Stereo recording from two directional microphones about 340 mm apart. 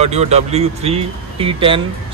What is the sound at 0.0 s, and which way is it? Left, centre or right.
Speech, centre.